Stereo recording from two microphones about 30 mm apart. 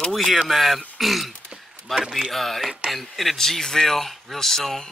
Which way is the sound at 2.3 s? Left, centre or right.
Centre.